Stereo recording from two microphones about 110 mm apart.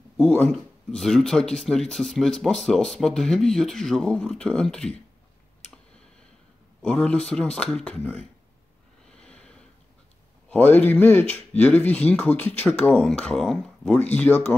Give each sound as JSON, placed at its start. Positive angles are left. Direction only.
{"t": 0.2, "sound": "speech", "side_deg": 10}
{"t": 6.8, "sound": "speech", "side_deg": 10}
{"t": 9.0, "sound": "snort", "side_deg": 10}
{"t": 10.5, "sound": "speech", "side_deg": 15}
{"t": 13.0, "sound": "speech", "side_deg": 5}